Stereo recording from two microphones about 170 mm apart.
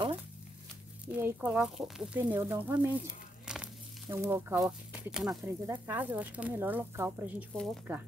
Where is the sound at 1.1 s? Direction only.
10° right (ahead or behind).